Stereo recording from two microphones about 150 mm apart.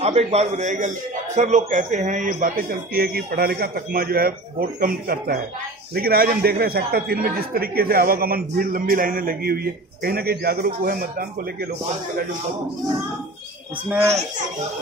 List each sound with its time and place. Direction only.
0.0 s a man's voice: 45° right (ahead or behind); by 11.2 s 80° right